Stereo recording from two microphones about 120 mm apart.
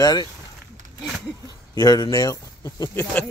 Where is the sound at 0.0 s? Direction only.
35° left (ahead or behind).